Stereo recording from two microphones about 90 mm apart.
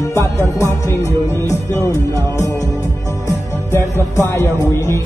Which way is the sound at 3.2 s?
35° left (ahead or behind).